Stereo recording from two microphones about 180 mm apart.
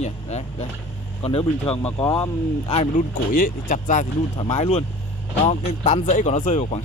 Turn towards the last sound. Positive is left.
turn(degrees=40)  # may be behind; listen again after turning